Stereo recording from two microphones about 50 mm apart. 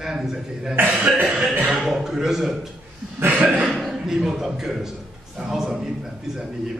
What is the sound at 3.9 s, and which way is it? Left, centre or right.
A man's voice, centre.